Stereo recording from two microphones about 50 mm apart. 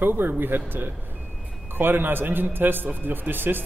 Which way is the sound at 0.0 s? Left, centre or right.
Right.